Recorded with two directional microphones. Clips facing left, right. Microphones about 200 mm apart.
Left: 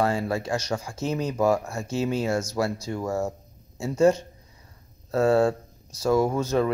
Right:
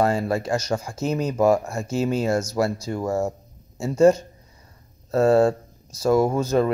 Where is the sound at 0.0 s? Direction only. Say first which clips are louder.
Right 3 dB; 45° right (ahead or behind).